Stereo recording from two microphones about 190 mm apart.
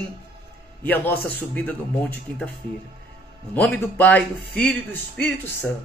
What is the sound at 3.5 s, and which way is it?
A man's voice, 10° left (ahead or behind).